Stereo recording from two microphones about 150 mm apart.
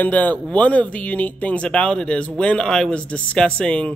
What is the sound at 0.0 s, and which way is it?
Speech, 10° left (ahead or behind).